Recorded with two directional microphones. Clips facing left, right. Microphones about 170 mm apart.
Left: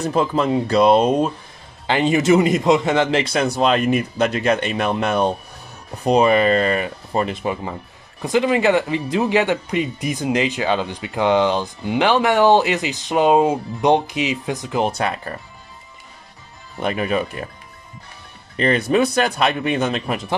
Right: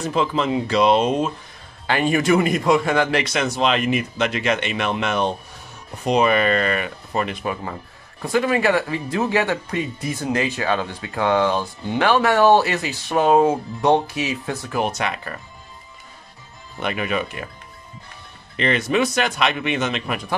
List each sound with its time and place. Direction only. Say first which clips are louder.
0.0 s a man's voice: left 2 dB; 40° left (ahead or behind)
1.9 s a man's voice: left 3 dB; 20° left (ahead or behind)
14.8 s a man's voice: left 3 dB; 30° left (ahead or behind)
16.8 s a man's voice: left 3 dB; 35° left (ahead or behind)
18.6 s a man's voice: left 3 dB; 35° left (ahead or behind)